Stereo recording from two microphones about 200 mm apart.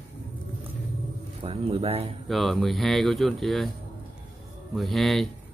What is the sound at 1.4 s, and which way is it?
Speech, 30° right (ahead or behind).